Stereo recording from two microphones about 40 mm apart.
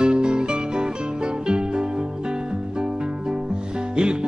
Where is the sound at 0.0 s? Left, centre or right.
Right.